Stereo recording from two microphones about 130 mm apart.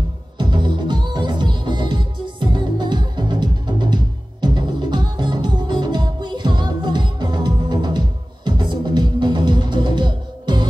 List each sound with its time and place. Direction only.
0.4 s music: 35° right (ahead or behind)